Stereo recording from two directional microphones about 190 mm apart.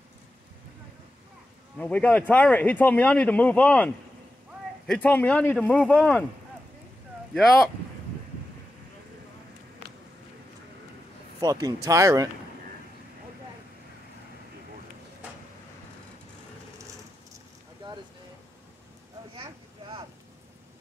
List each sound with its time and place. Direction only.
1.8 s speech: 5° left (ahead or behind)
11.4 s speech: 20° right (ahead or behind)